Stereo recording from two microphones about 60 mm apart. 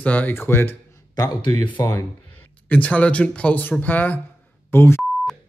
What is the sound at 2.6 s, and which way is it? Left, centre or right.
Speech, left.